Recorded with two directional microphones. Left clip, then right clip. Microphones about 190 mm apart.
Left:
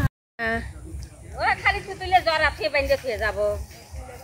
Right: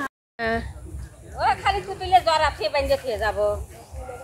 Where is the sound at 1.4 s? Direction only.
40° left (ahead or behind).